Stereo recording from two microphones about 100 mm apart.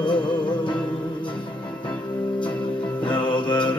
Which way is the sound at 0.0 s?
50° left (ahead or behind).